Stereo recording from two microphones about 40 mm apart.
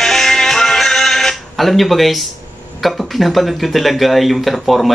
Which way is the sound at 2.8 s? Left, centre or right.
Centre.